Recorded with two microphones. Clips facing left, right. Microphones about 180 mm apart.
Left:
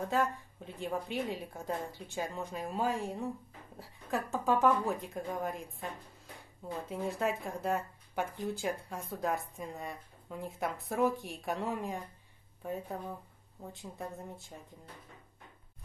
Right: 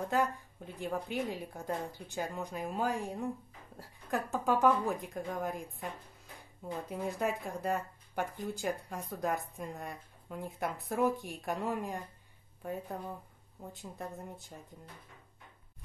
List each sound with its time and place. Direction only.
0.0 s speech: centre (ahead or behind)
6.9 s speech: centre (ahead or behind)